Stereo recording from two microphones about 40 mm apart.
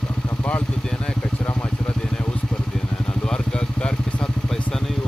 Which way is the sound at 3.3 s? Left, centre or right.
Left.